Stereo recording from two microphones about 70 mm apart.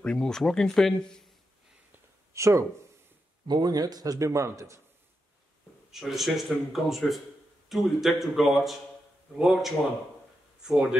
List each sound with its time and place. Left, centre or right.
0.0 s speech: centre
2.3 s speech: right
3.4 s a man's voice: right
5.9 s a man's voice: centre